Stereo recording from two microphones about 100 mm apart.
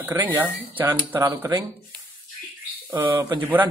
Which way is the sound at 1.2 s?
35° right (ahead or behind).